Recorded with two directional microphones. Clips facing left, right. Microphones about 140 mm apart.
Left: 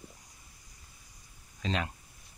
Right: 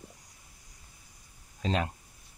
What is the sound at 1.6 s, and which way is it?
Speech, 40° right (ahead or behind).